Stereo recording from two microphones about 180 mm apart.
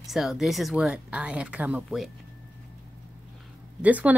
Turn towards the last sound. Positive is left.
turn(degrees=-10)  # may be behind; listen again after turning